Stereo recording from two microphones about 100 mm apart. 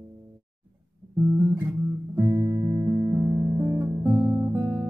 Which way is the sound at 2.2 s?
35° right (ahead or behind).